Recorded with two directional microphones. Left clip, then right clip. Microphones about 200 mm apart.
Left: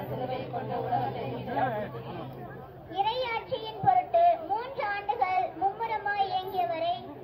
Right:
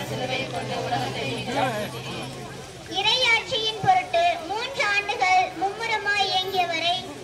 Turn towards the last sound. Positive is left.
turn(degrees=30)  # may be behind; listen again after turning